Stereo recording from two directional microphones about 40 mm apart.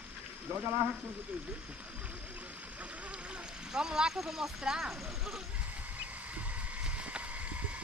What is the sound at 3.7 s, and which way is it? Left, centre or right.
Speech, centre.